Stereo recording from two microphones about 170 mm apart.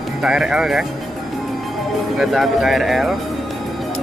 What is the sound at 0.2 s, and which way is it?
Music, 5° right (ahead or behind).